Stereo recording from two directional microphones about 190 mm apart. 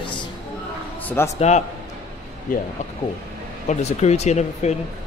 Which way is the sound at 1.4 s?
35° left (ahead or behind).